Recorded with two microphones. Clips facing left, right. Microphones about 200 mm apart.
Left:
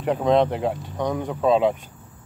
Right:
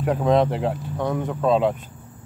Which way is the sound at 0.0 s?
Centre (ahead or behind).